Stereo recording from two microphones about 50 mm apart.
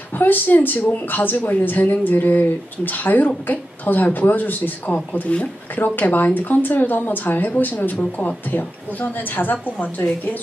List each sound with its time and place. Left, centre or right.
0.1 s speech: left